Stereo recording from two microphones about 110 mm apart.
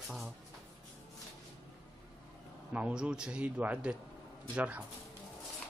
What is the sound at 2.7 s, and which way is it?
Speech, 10° right (ahead or behind).